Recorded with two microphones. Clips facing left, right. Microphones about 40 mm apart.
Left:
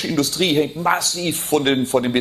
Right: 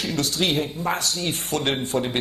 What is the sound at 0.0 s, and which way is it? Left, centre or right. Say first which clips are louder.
Speech: left 4 dB; left.